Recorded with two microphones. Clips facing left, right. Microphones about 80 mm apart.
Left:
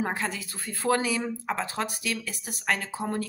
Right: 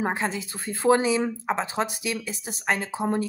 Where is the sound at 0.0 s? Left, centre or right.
Right.